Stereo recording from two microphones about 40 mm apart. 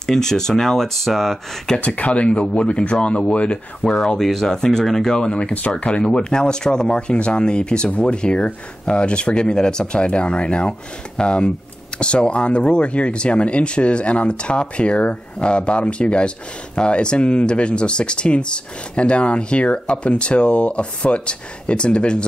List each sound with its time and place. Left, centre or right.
0.0 s speech: centre
1.8 s speech: left
4.2 s speech: centre
5.1 s speech: left